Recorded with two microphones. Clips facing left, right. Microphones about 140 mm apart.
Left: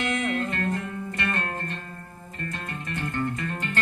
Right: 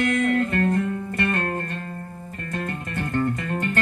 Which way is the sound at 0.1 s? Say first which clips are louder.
Right 6 dB; 50° right (ahead or behind).